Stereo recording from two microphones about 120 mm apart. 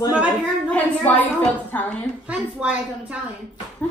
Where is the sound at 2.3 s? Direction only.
10° right (ahead or behind).